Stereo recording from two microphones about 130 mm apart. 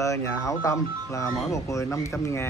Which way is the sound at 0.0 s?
25° left (ahead or behind).